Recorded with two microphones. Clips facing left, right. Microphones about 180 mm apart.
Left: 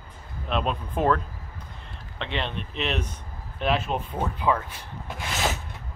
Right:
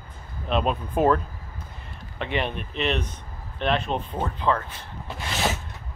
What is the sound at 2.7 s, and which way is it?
Speech, centre (ahead or behind).